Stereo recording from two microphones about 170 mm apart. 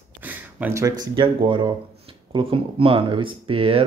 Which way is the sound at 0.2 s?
10° right (ahead or behind).